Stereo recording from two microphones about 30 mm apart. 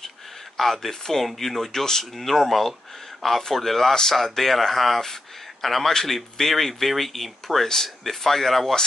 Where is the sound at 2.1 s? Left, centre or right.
Centre.